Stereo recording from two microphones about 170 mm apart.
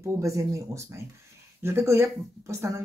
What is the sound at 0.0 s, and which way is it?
Speech, 20° right (ahead or behind).